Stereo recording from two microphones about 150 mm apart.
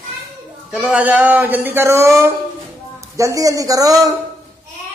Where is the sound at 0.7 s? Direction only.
5° right (ahead or behind); by 4.1 s 25° right (ahead or behind).